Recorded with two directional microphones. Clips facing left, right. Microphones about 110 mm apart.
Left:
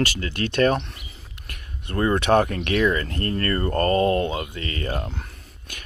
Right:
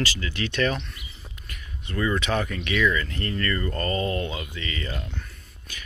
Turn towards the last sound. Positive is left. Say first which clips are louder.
# left 2 dB
turn(degrees=55)  # may be behind; listen again after turning